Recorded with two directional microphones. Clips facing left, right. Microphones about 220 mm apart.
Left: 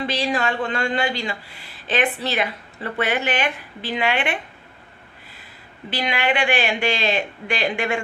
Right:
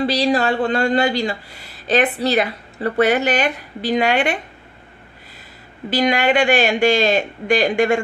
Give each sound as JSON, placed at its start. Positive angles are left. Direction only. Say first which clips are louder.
{"t": 0.0, "sound": "speech", "louder": "right 6 dB", "side_deg": -35}
{"t": 5.9, "sound": "a man's voice", "louder": "right 6 dB", "side_deg": -45}